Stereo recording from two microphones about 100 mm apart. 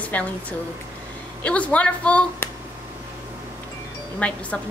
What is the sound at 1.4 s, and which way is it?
A woman's voice, 15° left (ahead or behind).